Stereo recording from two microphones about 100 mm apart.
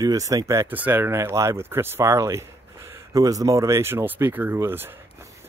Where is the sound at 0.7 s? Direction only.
15° right (ahead or behind).